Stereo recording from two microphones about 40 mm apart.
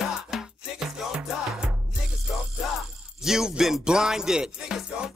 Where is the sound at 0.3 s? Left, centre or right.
Centre.